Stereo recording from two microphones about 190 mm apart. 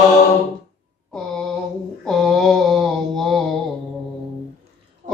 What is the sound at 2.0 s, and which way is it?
Mantra, centre (ahead or behind).